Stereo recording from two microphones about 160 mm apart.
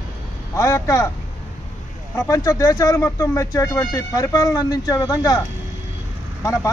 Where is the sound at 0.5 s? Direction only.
20° left (ahead or behind).